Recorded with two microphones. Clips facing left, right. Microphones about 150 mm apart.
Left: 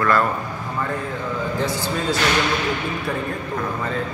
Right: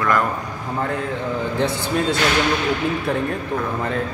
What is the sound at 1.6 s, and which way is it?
Speech, 60° right (ahead or behind).